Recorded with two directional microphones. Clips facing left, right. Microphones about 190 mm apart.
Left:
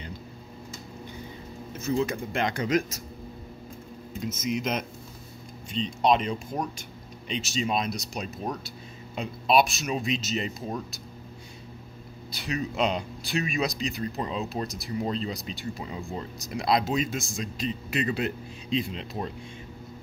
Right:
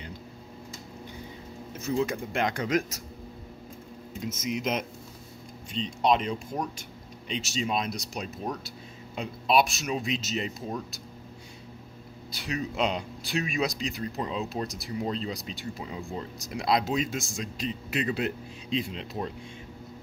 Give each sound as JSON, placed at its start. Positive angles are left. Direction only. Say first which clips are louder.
{"t": 2.0, "sound": "speech", "louder": "right 1 dB", "side_deg": -10}
{"t": 4.3, "sound": "speech", "louder": "left 2 dB", "side_deg": -60}
{"t": 5.7, "sound": "speech", "louder": "left 2 dB", "side_deg": 0}
{"t": 12.3, "sound": "speech", "louder": "left 1 dB", "side_deg": 0}